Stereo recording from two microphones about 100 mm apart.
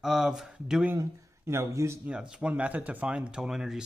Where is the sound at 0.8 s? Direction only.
25° right (ahead or behind).